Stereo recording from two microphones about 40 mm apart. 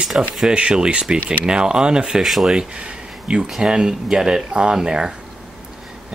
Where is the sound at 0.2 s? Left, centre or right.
Right.